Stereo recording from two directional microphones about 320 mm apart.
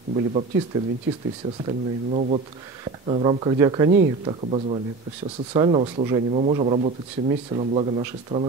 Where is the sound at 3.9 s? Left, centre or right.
Right.